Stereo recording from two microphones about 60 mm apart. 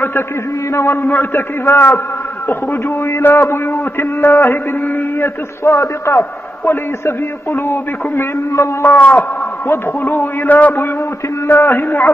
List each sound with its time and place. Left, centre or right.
1.0 s a man's voice: left
3.1 s a sound: left
6.6 s a man's voice: left
8.8 s speech: left
9.7 s a man's voice: left